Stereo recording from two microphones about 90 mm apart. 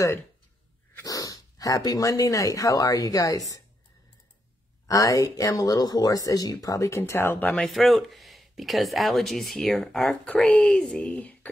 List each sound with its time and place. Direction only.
1.0 s speech: 40° left (ahead or behind)
4.8 s speech: 40° left (ahead or behind); by 7.5 s 20° left (ahead or behind)
7.5 s speech: centre (ahead or behind)